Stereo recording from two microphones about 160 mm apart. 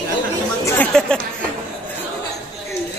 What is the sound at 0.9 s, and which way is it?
Speech, 5° left (ahead or behind).